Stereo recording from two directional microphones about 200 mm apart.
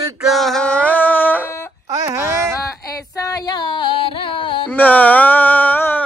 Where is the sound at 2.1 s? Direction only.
15° right (ahead or behind).